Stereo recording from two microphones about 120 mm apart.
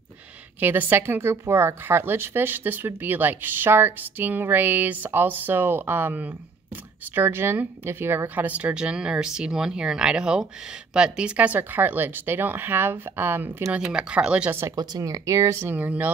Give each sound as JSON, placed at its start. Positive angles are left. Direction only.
{"t": 0.6, "sound": "speech", "side_deg": -15}
{"t": 13.7, "sound": "speech", "side_deg": -10}
{"t": 14.8, "sound": "speech", "side_deg": -30}